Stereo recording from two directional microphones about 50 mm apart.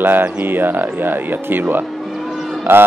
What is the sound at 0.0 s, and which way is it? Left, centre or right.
Speech, right.